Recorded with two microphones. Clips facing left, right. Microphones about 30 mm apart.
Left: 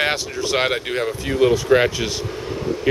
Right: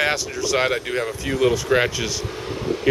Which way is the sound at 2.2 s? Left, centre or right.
Centre.